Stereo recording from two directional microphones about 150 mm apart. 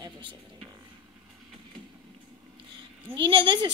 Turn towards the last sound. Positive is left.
turn(degrees=-30)  # may be behind; listen again after turning